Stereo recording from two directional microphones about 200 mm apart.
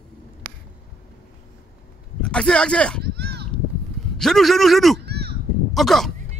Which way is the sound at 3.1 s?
55° right (ahead or behind).